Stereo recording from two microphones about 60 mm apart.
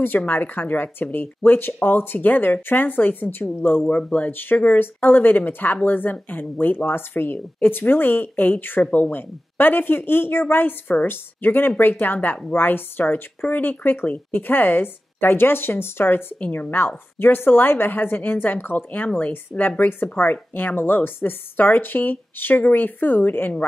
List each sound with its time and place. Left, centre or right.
0.2 s a woman's voice: left
19.0 s a woman's voice: left